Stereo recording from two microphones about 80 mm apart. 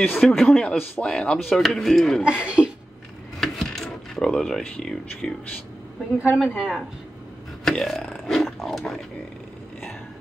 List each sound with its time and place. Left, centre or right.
0.0 s a man's voice: centre
0.3 s a man's voice: centre
2.2 s a woman's voice: centre
3.3 s a sound: centre
6.1 s a woman's voice: centre
7.6 s speech: centre